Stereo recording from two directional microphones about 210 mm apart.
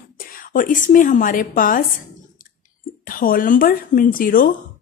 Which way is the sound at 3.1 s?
40° left (ahead or behind).